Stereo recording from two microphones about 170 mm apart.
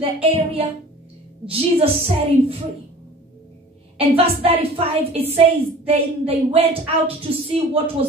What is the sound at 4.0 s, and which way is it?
Speech, 35° right (ahead or behind).